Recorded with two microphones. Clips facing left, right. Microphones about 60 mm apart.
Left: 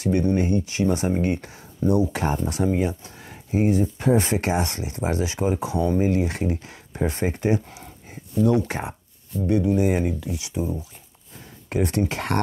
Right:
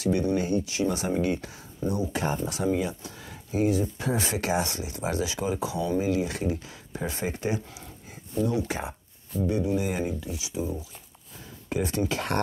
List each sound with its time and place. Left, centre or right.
0.0 s speech: left
2.0 s speech: left
2.4 s speech: left
11.7 s speech: left